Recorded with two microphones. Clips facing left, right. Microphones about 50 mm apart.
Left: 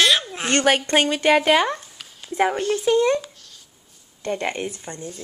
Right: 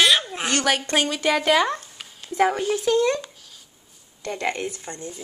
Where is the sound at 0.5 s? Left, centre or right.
Left.